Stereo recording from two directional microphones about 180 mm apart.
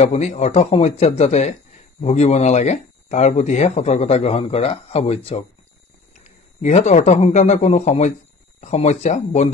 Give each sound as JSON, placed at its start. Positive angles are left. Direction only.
{"t": 0.0, "sound": "a man's voice", "side_deg": 40}